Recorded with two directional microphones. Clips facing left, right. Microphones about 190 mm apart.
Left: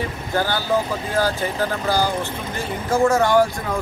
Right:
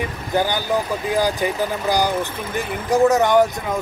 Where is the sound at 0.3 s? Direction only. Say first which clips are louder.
Right 1 dB; 15° right (ahead or behind).